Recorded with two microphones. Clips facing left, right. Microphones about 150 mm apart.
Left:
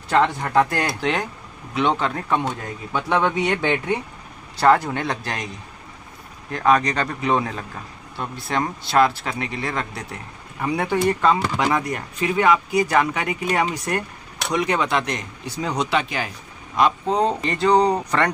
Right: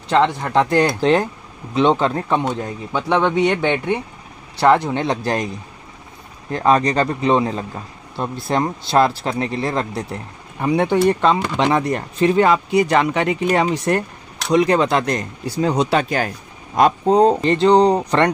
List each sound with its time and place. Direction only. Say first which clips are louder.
0.1 s speech: right 2 dB; 20° right (ahead or behind)
6.5 s speech: right 3 dB; 30° right (ahead or behind)